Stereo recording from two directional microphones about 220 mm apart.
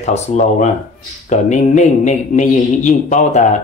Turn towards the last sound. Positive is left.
turn(degrees=30)  # may be behind; listen again after turning